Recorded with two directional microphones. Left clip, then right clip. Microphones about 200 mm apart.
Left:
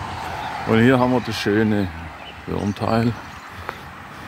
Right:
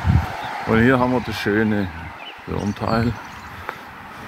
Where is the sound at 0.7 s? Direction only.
15° left (ahead or behind).